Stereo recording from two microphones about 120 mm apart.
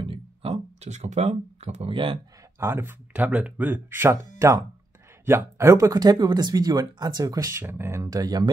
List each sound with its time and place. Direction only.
0.0 s a sound: 50° right (ahead or behind); by 1.9 s 65° right (ahead or behind)
1.9 s speech: 45° right (ahead or behind)
2.6 s speech: 20° right (ahead or behind)